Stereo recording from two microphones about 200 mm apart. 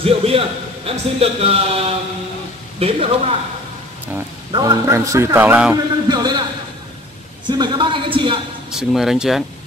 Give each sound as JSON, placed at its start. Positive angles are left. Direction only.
{"t": 0.0, "sound": "a man's voice", "side_deg": -30}
{"t": 4.5, "sound": "a man's voice", "side_deg": -25}
{"t": 6.0, "sound": "a man's voice", "side_deg": -20}
{"t": 7.4, "sound": "a man's voice", "side_deg": -20}
{"t": 8.7, "sound": "speech", "side_deg": 0}